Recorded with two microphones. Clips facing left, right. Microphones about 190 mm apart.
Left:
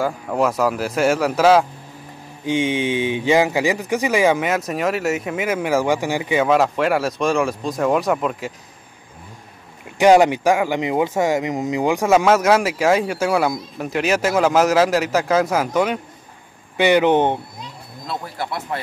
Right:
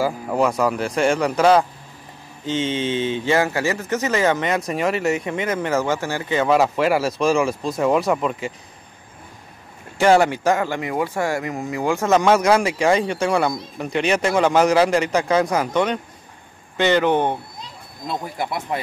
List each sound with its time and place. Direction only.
0.0 s speech: centre (ahead or behind)
6.5 s speech: centre (ahead or behind)
9.9 s speech: 15° left (ahead or behind)
18.0 s speech: 20° right (ahead or behind)